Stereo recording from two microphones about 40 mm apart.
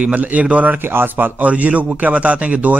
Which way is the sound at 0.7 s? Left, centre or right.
Right.